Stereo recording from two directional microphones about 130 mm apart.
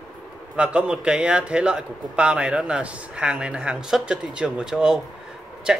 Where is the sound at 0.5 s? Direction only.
10° right (ahead or behind).